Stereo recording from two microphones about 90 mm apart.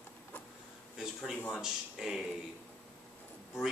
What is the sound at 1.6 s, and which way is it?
Speech, 5° right (ahead or behind).